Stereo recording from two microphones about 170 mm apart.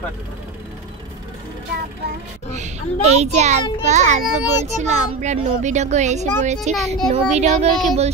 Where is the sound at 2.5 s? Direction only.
40° right (ahead or behind).